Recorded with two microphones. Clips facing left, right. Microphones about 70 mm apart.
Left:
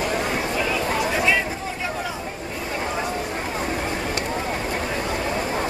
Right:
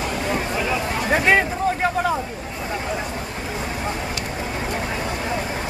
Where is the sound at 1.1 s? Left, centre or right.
Right.